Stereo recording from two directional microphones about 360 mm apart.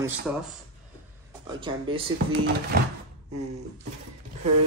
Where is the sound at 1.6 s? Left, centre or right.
Centre.